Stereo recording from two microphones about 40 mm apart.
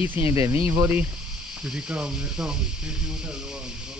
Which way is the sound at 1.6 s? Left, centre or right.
Right.